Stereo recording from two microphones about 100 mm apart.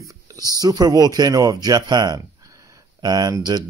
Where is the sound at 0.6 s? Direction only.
40° right (ahead or behind).